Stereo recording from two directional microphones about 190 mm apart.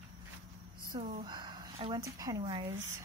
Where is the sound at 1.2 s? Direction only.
25° right (ahead or behind).